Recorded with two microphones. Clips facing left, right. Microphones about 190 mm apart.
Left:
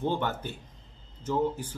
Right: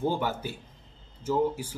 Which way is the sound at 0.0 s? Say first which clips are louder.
Right 1 dB; 10° right (ahead or behind).